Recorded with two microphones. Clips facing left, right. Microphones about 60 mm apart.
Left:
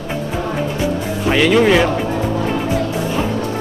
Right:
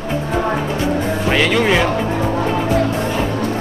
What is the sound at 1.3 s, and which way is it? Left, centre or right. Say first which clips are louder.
Speech: left 4 dB; centre.